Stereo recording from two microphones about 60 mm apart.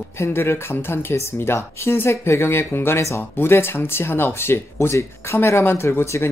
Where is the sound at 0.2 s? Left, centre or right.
Left.